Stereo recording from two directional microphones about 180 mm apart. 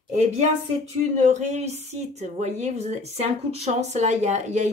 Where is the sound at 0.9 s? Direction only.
40° right (ahead or behind).